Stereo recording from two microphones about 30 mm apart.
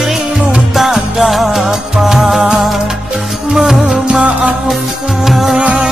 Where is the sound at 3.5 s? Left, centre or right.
Centre.